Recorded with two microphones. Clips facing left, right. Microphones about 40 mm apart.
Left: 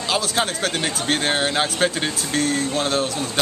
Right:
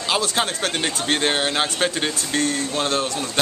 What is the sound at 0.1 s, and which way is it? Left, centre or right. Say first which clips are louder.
Speech: even; centre.